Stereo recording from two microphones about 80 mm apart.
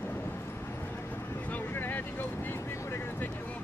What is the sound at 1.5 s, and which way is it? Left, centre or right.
Vehicle, left.